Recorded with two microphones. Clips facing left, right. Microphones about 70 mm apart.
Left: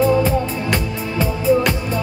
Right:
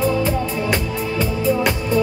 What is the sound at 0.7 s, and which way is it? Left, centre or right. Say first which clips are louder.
Music: right 1 dB; centre.